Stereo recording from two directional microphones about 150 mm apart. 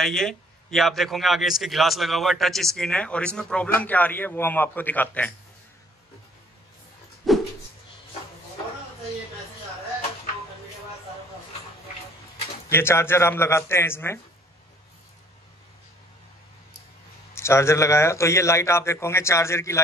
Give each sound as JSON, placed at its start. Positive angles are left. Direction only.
{"t": 0.0, "sound": "a man's voice", "side_deg": 0}
{"t": 7.3, "sound": "dog", "side_deg": 0}
{"t": 12.6, "sound": "speech", "side_deg": 15}
{"t": 17.3, "sound": "a man's voice", "side_deg": 20}